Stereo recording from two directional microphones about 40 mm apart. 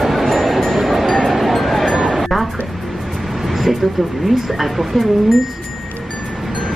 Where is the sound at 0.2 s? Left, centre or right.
Centre.